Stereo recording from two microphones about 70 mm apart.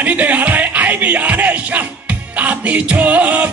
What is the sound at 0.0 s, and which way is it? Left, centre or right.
Music, right.